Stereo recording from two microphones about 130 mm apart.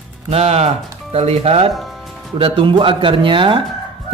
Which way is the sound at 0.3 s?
55° right (ahead or behind).